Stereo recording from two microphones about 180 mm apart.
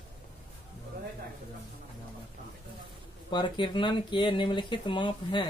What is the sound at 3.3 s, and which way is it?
Speech, 25° left (ahead or behind).